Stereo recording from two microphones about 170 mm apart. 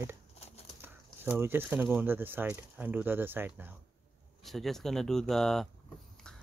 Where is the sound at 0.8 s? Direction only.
15° right (ahead or behind).